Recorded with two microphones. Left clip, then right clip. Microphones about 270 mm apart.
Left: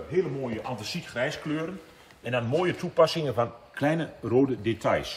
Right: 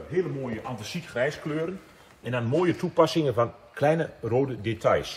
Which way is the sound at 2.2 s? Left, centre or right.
Right.